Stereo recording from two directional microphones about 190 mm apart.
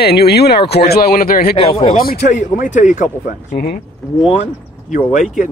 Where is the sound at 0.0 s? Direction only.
55° left (ahead or behind).